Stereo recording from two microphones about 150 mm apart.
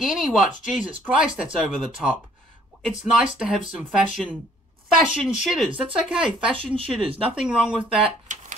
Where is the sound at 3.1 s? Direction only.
5° right (ahead or behind).